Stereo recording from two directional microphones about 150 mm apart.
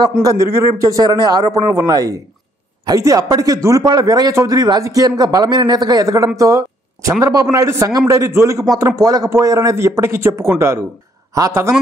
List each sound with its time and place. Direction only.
0.2 s speech: 20° right (ahead or behind)